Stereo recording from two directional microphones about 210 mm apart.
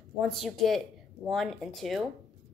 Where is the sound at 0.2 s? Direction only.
Centre (ahead or behind).